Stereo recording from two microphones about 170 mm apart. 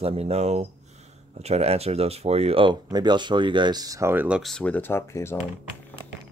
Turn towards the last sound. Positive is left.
turn(degrees=15)  # may be behind; listen again after turning